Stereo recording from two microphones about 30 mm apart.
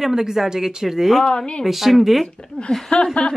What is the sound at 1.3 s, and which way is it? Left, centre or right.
Speech, left.